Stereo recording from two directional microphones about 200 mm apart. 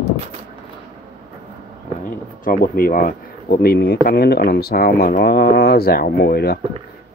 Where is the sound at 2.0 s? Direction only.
45° left (ahead or behind).